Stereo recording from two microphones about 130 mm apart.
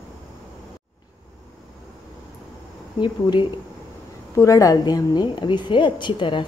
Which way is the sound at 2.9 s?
35° left (ahead or behind).